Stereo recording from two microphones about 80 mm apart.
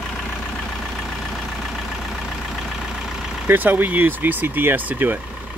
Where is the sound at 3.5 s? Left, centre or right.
Right.